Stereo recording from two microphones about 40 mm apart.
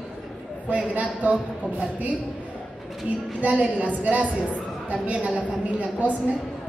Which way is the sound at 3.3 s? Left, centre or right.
Right.